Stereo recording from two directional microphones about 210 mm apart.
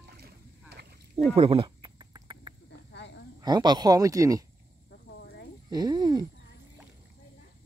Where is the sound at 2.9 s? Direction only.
55° left (ahead or behind).